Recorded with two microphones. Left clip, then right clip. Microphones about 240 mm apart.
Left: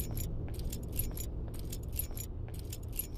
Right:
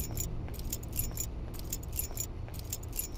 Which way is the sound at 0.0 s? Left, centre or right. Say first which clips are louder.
Right 3 dB; centre.